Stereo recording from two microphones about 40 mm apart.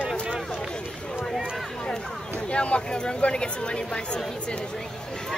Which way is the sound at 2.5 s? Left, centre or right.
Left.